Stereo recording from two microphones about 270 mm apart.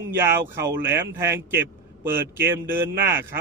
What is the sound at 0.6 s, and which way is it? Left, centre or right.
A man's voice, centre.